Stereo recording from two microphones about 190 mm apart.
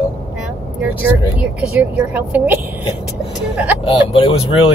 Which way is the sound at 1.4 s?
5° right (ahead or behind).